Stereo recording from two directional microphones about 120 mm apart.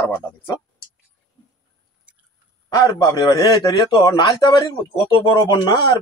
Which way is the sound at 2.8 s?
35° left (ahead or behind).